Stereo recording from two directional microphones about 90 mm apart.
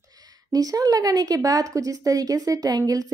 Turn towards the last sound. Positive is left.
turn(degrees=-40)  # may be behind; listen again after turning